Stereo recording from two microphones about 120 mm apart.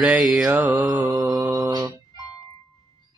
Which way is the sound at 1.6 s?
35° right (ahead or behind).